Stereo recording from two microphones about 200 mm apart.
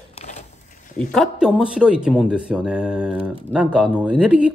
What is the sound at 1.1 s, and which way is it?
Speech, centre (ahead or behind).